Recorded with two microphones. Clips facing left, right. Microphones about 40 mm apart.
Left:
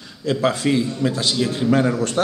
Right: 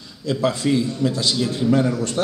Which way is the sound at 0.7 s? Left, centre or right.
Left.